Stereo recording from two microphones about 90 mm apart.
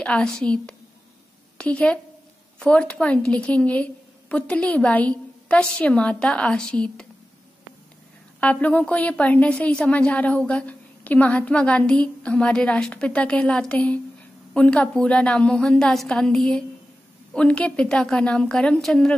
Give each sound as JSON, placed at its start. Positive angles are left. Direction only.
{"t": 0.0, "sound": "a woman's voice", "side_deg": 10}
{"t": 8.4, "sound": "a woman's voice", "side_deg": 15}